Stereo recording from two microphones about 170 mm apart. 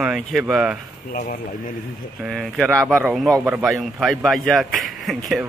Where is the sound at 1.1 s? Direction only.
50° left (ahead or behind).